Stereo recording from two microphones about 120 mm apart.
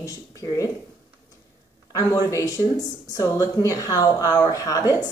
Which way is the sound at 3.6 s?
30° left (ahead or behind).